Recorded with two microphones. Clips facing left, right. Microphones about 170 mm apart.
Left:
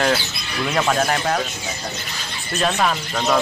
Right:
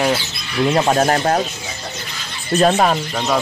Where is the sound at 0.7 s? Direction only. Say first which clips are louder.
Right 4 dB; 30° right (ahead or behind).